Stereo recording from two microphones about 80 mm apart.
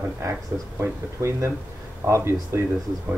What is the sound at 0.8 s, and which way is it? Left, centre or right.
Speech, right.